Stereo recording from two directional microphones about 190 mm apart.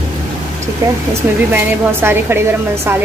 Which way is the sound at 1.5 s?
10° right (ahead or behind).